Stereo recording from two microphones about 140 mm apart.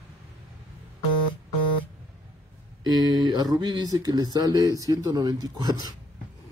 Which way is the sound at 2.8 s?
30° right (ahead or behind).